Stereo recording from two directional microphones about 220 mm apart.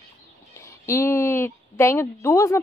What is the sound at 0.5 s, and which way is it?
A woman's voice, 10° left (ahead or behind).